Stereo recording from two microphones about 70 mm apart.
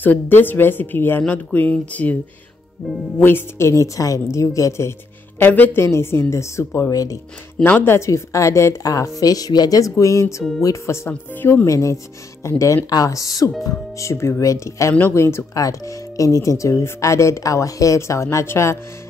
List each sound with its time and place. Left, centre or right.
0.0 s a woman's voice: left
3.2 s speech: left
5.5 s a woman's voice: left
6.9 s speech: left
7.8 s speech: left
8.8 s speech: left
9.8 s speech: left
11.1 s a woman's voice: left
11.6 s a woman's voice: left
15.5 s speech: left